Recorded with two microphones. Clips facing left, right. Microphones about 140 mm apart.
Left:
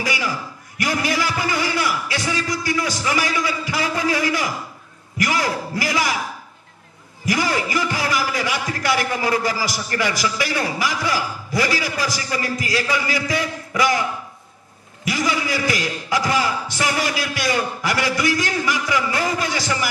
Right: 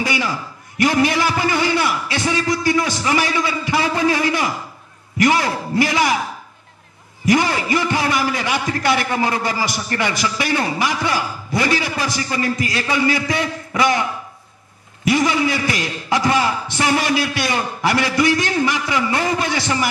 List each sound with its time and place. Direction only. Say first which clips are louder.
0.0 s a man's voice: right 3 dB; 25° right (ahead or behind)
7.2 s a man's voice: right 5 dB; 25° right (ahead or behind)
15.0 s a man's voice: right 5 dB; 25° right (ahead or behind)